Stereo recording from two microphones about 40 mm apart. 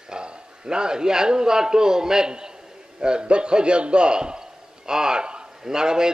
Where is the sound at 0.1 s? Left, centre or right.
Right.